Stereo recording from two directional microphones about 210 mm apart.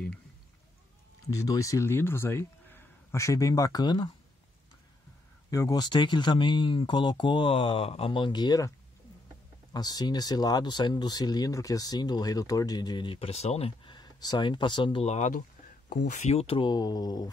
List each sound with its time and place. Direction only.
1.4 s speech: 15° left (ahead or behind)
5.5 s speech: 15° left (ahead or behind)